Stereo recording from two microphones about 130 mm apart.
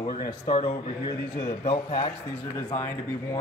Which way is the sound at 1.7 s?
40° left (ahead or behind).